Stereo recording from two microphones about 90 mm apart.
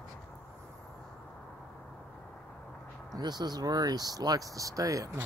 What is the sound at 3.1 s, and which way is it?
Speech, 50° right (ahead or behind).